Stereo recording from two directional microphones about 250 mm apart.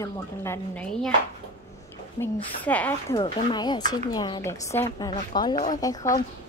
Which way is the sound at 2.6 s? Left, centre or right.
Centre.